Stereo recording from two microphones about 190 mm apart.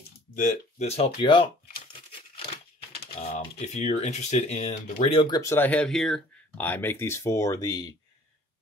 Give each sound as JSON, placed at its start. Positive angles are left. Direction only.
{"t": 0.4, "sound": "speech", "side_deg": 40}
{"t": 3.2, "sound": "speech", "side_deg": 35}